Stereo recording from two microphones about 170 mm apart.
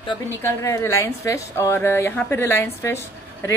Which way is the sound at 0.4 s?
15° left (ahead or behind).